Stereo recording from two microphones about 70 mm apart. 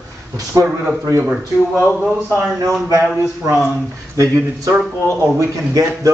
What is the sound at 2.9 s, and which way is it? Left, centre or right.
Speech, right.